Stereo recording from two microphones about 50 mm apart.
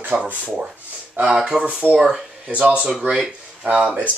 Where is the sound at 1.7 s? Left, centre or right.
Right.